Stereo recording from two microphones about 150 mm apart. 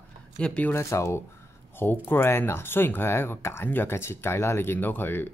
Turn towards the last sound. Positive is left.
turn(degrees=15)  # may be behind; listen again after turning